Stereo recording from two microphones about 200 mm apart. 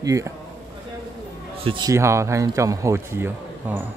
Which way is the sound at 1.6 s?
20° right (ahead or behind).